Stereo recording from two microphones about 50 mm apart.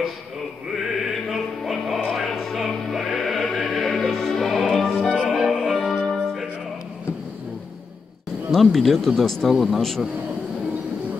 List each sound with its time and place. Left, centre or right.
0.7 s music: centre
5.0 s music: left
5.3 s music: centre
8.5 s a man's voice: centre